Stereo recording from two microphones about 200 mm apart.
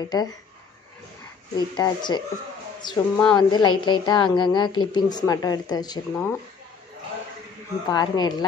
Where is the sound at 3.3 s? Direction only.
20° left (ahead or behind).